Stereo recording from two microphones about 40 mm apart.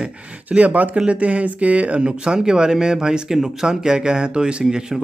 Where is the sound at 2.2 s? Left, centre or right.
Centre.